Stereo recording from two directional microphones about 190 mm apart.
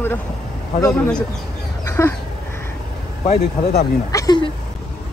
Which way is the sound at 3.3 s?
35° left (ahead or behind).